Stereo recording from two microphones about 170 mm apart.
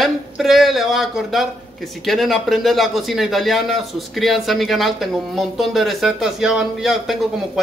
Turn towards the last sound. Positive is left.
turn(degrees=0)  # may be behind; listen again after turning